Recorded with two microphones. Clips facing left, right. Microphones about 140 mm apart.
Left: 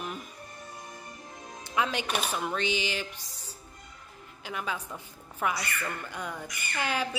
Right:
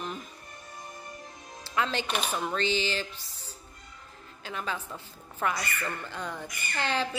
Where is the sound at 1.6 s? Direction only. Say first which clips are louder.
Even; 15° left (ahead or behind).